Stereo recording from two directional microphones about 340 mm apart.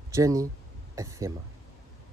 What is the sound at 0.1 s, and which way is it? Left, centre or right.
Speech, centre.